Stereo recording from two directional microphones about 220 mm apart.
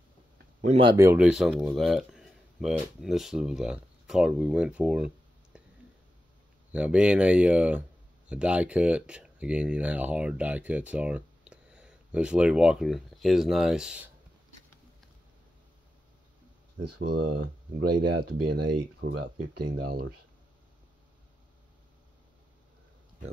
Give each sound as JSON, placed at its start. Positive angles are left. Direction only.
{"t": 0.6, "sound": "speech", "side_deg": -30}
{"t": 0.9, "sound": "speech", "side_deg": -10}
{"t": 6.7, "sound": "speech", "side_deg": -5}
{"t": 17.0, "sound": "speech", "side_deg": -45}
{"t": 17.4, "sound": "speech", "side_deg": -65}
{"t": 18.7, "sound": "speech", "side_deg": -50}